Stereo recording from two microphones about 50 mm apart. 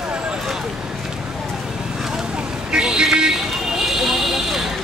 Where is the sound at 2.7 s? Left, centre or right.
Centre.